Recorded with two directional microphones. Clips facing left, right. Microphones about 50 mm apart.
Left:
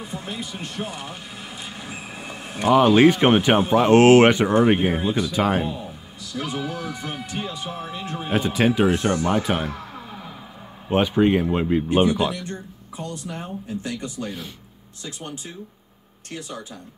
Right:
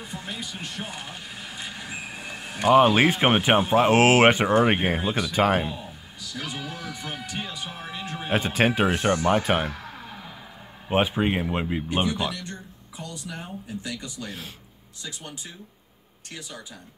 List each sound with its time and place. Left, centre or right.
0.0 s speech: left
2.0 s vehicle: left
2.6 s speech: right
6.3 s speech: left
8.2 s speech: right
10.9 s speech: centre
11.4 s speech: centre
12.3 s speech: left